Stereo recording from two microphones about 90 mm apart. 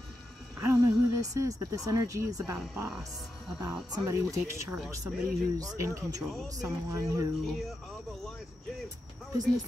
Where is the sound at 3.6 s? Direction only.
45° right (ahead or behind).